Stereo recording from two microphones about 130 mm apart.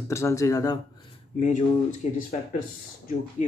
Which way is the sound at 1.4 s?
80° left.